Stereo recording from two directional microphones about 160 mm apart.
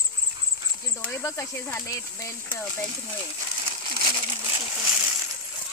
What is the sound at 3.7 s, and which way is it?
Crumpling, 30° right (ahead or behind).